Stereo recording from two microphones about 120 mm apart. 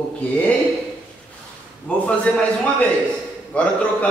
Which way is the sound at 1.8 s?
10° left (ahead or behind).